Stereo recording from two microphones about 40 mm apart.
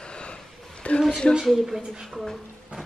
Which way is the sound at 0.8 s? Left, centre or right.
Left.